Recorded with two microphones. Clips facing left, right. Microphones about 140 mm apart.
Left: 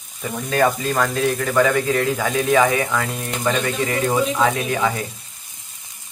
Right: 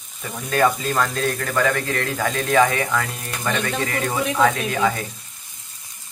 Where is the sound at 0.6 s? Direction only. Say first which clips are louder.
Left 1 dB; 10° left (ahead or behind).